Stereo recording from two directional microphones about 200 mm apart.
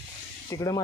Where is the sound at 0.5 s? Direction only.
15° left (ahead or behind).